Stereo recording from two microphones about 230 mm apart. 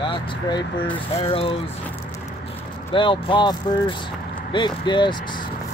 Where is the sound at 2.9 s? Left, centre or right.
Left.